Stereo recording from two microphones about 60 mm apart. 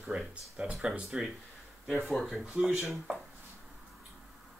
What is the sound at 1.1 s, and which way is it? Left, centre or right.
Speech, centre.